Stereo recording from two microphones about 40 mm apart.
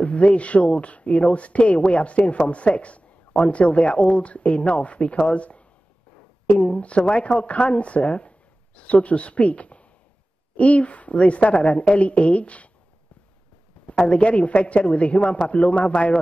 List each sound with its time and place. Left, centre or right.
0.0 s speech: left
6.6 s speech: left
13.8 s speech: left